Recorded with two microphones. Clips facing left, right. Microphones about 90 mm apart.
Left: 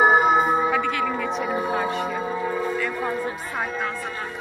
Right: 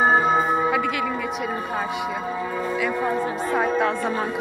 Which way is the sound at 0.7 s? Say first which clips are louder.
Even; 5° right (ahead or behind).